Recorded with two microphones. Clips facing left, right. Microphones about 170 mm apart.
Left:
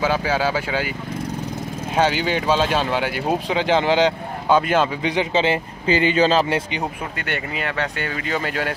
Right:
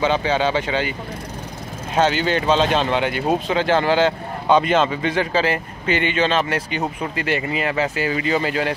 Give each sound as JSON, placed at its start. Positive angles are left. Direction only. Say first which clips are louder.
{"t": 0.0, "sound": "speech", "louder": "right 1 dB", "side_deg": 5}
{"t": 2.0, "sound": "speech", "louder": "right 1 dB", "side_deg": 10}
{"t": 6.8, "sound": "speech", "louder": "right 3 dB", "side_deg": 0}